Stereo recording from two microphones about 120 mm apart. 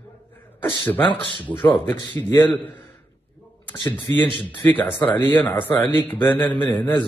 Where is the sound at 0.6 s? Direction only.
15° left (ahead or behind).